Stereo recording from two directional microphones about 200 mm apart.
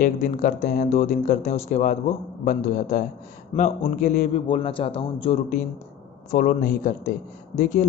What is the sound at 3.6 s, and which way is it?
A man's voice, 40° left (ahead or behind).